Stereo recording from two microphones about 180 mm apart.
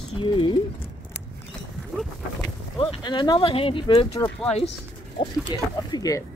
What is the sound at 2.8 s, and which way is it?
Speech, 25° left (ahead or behind).